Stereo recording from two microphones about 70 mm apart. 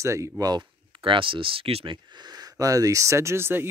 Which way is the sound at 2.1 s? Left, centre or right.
Right.